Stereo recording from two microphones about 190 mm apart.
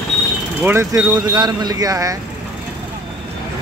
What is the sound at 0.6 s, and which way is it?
A man's voice, 15° right (ahead or behind).